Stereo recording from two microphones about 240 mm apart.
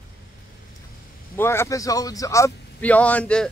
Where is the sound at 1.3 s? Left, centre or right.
Centre.